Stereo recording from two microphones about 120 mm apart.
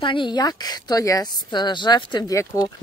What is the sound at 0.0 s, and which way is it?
Speech, 45° left (ahead or behind).